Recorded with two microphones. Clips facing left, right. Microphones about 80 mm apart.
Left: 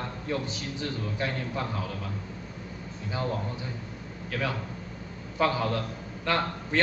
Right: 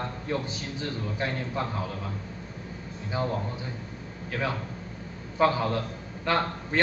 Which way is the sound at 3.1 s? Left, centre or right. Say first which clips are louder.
Right 2 dB; right.